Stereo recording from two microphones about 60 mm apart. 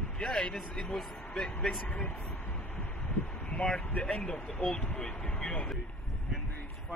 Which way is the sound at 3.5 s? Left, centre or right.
Centre.